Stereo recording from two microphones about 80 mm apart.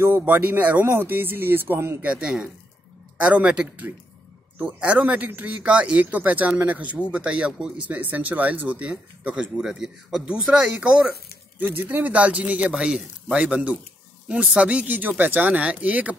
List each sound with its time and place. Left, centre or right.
0.0 s speech: right
2.0 s a man's voice: centre
11.5 s a man's voice: right